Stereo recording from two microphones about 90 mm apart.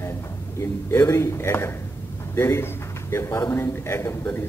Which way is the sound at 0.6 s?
30° left (ahead or behind).